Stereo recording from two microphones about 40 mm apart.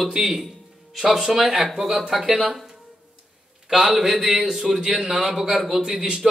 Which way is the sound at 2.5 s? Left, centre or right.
Centre.